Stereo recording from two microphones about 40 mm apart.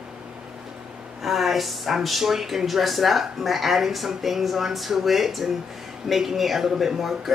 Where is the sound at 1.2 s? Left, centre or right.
Centre.